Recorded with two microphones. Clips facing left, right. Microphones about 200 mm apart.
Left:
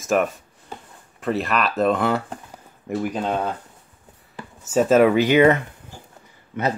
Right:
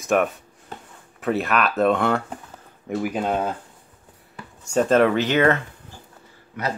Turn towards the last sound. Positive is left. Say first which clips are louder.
# left 4 dB
turn(degrees=25)  # may be behind; listen again after turning